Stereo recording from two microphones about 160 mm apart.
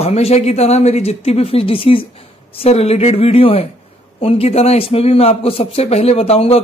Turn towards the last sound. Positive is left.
turn(degrees=40)  # may be behind; listen again after turning